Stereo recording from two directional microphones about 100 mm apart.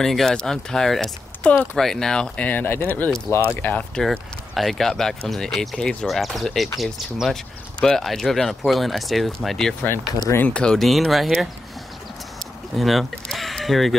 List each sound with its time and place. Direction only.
0.0 s speech: centre (ahead or behind); by 3.4 s 25° left (ahead or behind)
3.9 s speech: 5° left (ahead or behind)
10.3 s speech: 15° left (ahead or behind)
12.7 s speech: centre (ahead or behind)